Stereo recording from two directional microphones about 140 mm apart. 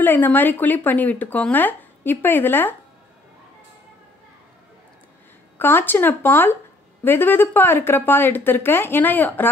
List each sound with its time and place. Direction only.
0.0 s speech: 15° left (ahead or behind)
5.6 s speech: 15° left (ahead or behind)